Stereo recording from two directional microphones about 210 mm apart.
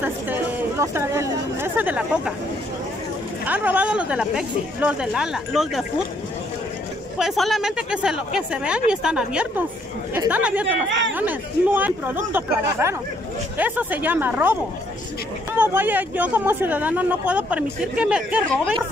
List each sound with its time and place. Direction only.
0.0 s speech: 10° right (ahead or behind)
3.4 s speech: 5° right (ahead or behind)
7.2 s speech: centre (ahead or behind)
10.9 s speech: 60° right (ahead or behind)
11.1 s speech: 10° right (ahead or behind)
15.5 s speech: 10° right (ahead or behind)